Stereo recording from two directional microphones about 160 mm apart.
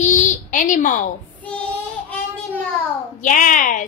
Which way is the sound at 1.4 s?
10° left (ahead or behind).